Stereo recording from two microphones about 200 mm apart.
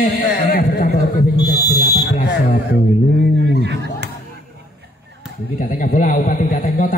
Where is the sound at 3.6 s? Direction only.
60° right (ahead or behind).